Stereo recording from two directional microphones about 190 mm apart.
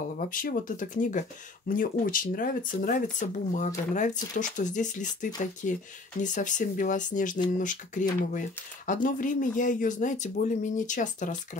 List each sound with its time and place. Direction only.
0.3 s speech: 45° left (ahead or behind)